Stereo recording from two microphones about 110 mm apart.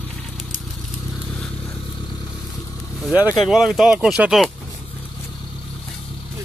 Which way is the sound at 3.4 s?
5° right (ahead or behind).